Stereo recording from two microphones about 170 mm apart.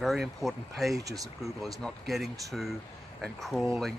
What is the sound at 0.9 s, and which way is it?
Speech, 20° right (ahead or behind).